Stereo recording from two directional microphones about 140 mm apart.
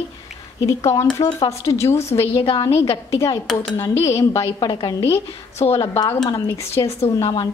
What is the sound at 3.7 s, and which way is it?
Speech, 20° left (ahead or behind).